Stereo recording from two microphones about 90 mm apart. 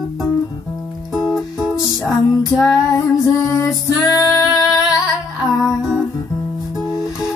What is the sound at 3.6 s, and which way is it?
Music, 45° left (ahead or behind).